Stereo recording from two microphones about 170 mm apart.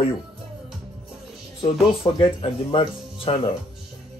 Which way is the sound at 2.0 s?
30° left (ahead or behind).